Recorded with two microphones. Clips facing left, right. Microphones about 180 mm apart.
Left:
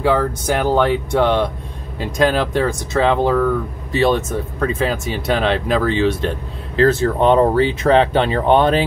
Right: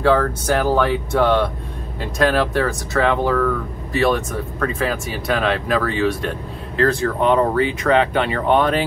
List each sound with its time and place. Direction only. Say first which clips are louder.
0.0 s speech: even; 10° left (ahead or behind); by 8.8 s 30° left (ahead or behind)